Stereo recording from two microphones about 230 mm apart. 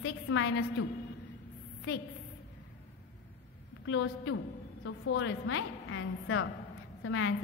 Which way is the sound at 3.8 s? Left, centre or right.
Left.